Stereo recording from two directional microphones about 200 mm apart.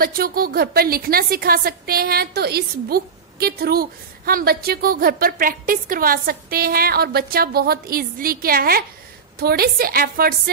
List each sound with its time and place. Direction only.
0.0 s a woman's voice: 45° right (ahead or behind)